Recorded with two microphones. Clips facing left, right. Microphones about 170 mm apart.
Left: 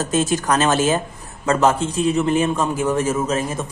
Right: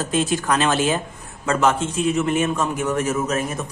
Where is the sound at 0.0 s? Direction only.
40° left (ahead or behind).